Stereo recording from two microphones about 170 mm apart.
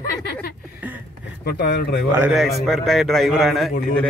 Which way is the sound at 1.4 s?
70° left (ahead or behind).